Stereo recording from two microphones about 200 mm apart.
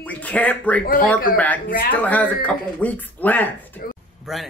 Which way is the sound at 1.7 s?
45° left (ahead or behind).